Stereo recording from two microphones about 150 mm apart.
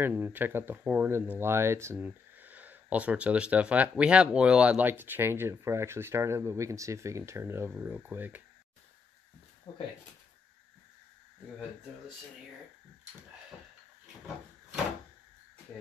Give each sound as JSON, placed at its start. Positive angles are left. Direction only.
{"t": 0.0, "sound": "speech", "side_deg": -15}
{"t": 9.7, "sound": "speech", "side_deg": 30}